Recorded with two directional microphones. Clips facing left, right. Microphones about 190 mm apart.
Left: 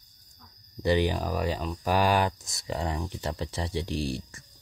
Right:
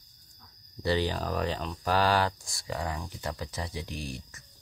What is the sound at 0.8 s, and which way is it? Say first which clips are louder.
Speech: left 3 dB; 15° left (ahead or behind).